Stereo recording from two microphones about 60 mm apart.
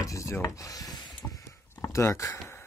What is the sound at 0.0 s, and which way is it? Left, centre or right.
Rub, left.